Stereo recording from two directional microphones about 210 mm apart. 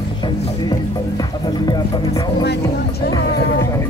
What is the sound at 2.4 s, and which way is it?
Music, 50° left (ahead or behind).